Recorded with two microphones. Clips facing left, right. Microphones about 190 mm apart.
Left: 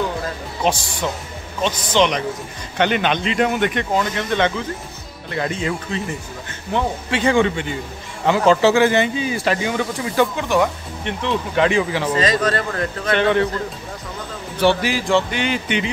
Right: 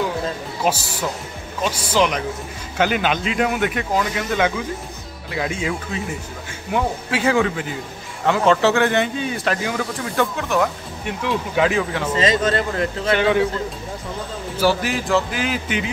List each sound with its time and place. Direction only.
0.7 s speech: 5° right (ahead or behind)
12.2 s speech: 25° right (ahead or behind)
13.1 s speech: 5° right (ahead or behind)
14.6 s speech: centre (ahead or behind)